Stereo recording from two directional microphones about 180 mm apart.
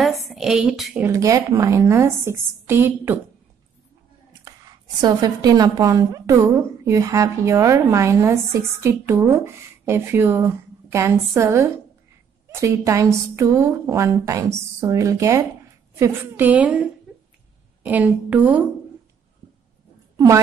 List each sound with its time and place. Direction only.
0.0 s a woman's voice: centre (ahead or behind)
1.0 s a woman's voice: 15° right (ahead or behind)
5.0 s a woman's voice: 20° right (ahead or behind)